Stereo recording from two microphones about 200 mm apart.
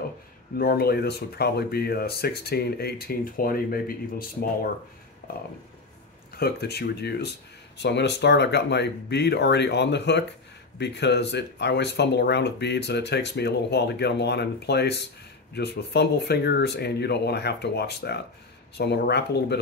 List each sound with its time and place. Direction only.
0.6 s speech: 50° left (ahead or behind)
6.3 s speech: 50° left (ahead or behind)